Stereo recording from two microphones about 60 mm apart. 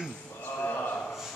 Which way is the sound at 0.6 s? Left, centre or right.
Left.